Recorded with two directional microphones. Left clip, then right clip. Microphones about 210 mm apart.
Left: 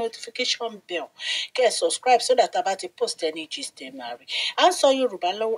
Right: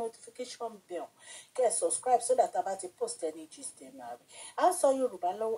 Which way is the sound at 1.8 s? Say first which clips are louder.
Left 8 dB; 40° left (ahead or behind).